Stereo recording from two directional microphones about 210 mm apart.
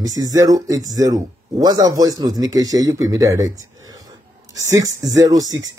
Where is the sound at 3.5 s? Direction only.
70° right (ahead or behind).